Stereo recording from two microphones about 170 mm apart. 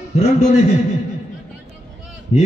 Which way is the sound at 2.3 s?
45° left (ahead or behind).